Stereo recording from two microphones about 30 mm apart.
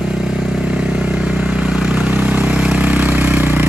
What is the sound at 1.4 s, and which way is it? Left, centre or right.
Vehicle, right.